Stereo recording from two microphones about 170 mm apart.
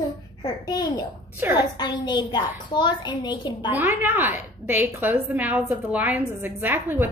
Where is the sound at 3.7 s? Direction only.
10° right (ahead or behind).